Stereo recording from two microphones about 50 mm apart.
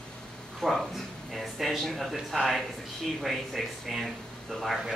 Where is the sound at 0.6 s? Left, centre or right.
Centre.